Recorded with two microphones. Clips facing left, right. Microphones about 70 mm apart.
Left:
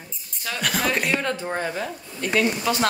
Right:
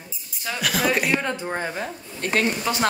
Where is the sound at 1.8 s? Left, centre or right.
Right.